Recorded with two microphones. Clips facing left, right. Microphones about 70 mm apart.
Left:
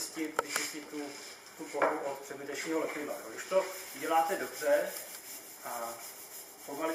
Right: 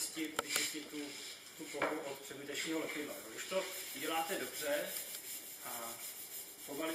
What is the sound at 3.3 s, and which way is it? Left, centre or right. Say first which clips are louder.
Speech: left 10 dB; centre.